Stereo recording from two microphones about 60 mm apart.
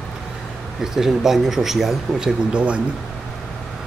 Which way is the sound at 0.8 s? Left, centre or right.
Centre.